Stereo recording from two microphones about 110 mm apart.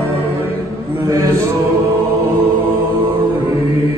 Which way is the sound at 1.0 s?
30° right (ahead or behind).